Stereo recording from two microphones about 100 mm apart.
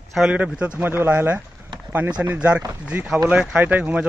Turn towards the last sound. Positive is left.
turn(degrees=-15)  # may be behind; listen again after turning